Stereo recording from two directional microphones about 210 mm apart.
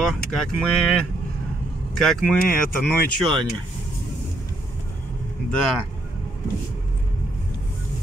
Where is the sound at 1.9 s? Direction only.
5° left (ahead or behind).